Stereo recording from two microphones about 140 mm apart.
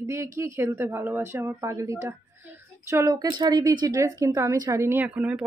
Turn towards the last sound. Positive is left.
turn(degrees=-10)  # may be behind; listen again after turning